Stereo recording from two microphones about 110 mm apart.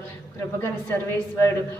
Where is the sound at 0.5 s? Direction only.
15° left (ahead or behind).